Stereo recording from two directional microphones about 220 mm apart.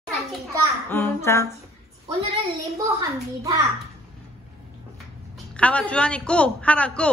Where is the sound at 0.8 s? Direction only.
10° left (ahead or behind).